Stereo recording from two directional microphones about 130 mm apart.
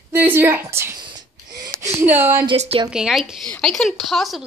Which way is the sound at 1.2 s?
30° right (ahead or behind).